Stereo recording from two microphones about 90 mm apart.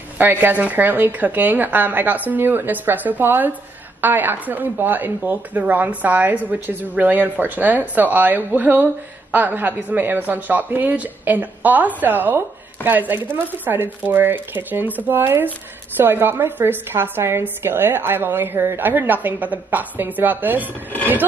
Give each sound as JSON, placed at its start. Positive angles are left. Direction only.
{"t": 0.2, "sound": "a woman's voice", "side_deg": -20}